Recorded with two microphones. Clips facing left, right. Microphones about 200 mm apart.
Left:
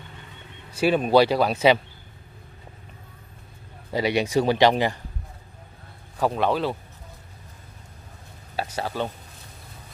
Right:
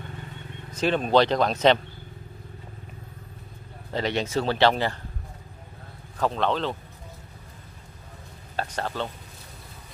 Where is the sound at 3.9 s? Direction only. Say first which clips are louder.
Left 4 dB; 10° left (ahead or behind).